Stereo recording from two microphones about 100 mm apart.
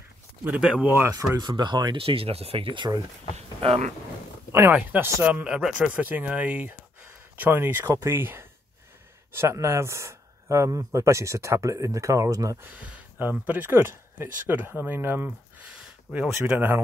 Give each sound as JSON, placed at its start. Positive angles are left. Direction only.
{"t": 0.6, "sound": "speech", "side_deg": -5}
{"t": 0.8, "sound": "speech", "side_deg": -20}
{"t": 1.1, "sound": "speech", "side_deg": -40}
{"t": 3.3, "sound": "speech", "side_deg": -70}
{"t": 4.5, "sound": "speech", "side_deg": -25}
{"t": 12.6, "sound": "speech", "side_deg": -15}
{"t": 15.7, "sound": "a sound", "side_deg": -10}
{"t": 16.5, "sound": "speech", "side_deg": -20}